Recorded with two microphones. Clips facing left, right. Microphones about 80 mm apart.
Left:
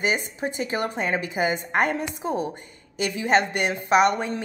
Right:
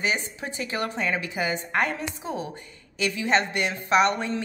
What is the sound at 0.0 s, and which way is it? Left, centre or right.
A woman's voice, left.